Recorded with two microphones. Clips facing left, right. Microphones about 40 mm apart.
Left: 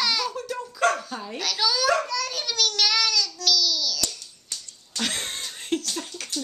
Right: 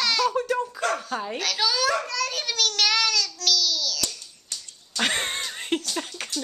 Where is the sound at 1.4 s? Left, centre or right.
Centre.